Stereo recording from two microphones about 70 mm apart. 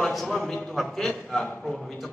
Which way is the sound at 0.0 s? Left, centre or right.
Centre.